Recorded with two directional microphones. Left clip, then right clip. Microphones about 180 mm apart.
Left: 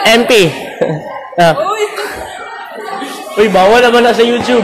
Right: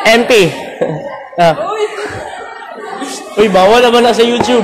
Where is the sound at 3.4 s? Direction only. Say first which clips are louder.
Even; 5° right (ahead or behind).